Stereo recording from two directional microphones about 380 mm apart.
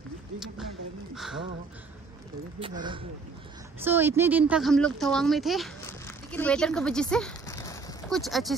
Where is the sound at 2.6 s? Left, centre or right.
Centre.